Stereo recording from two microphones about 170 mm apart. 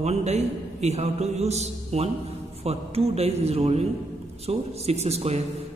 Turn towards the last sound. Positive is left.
turn(degrees=-40)  # may be behind; listen again after turning